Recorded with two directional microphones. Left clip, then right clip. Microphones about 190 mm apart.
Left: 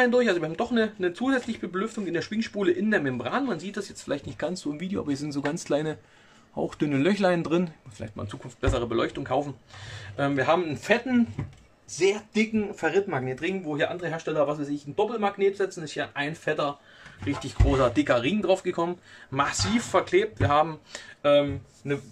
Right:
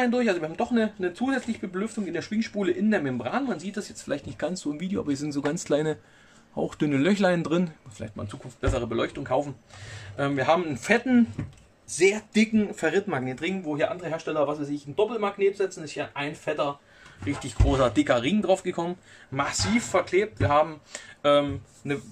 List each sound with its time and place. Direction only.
0.0 s speech: 10° left (ahead or behind)
10.8 s speech: 20° right (ahead or behind)
12.0 s speech: 30° right (ahead or behind)
13.2 s speech: 10° right (ahead or behind)
13.7 s speech: 5° left (ahead or behind)
15.5 s speech: 20° left (ahead or behind)
17.2 s speech: centre (ahead or behind)
21.2 s speech: 15° right (ahead or behind)